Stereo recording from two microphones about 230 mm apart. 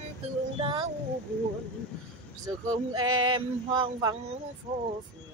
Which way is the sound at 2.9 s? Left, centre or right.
Centre.